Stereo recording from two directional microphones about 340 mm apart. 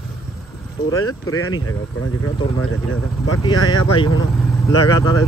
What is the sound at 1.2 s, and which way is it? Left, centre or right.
Speech, left.